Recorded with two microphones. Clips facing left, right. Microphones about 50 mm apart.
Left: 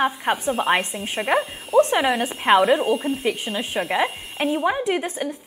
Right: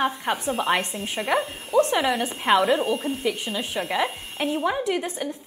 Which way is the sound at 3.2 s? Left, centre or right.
Centre.